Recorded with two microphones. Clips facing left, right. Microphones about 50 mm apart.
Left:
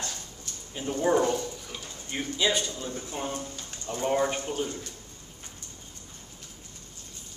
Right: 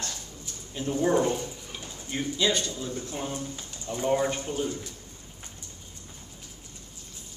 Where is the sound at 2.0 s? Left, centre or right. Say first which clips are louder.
Right 1 dB; centre.